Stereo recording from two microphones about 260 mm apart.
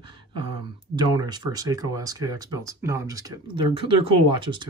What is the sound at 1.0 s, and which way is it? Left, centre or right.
Speech, centre.